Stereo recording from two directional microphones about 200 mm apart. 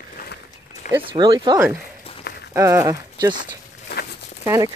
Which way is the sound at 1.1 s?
20° right (ahead or behind).